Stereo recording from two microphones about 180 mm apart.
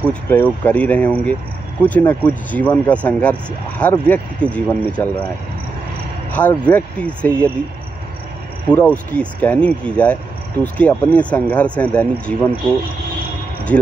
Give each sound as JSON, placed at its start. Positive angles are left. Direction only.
{"t": 0.1, "sound": "speech", "side_deg": 10}
{"t": 6.3, "sound": "speech", "side_deg": 10}
{"t": 8.6, "sound": "speech", "side_deg": 10}